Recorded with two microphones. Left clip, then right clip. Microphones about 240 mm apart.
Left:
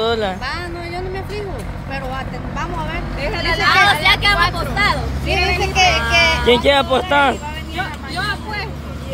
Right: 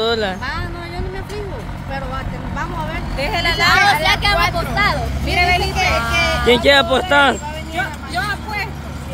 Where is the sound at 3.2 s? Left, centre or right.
Right.